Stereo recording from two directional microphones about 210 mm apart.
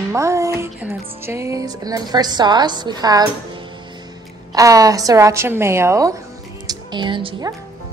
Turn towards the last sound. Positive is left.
turn(degrees=-20)  # may be behind; listen again after turning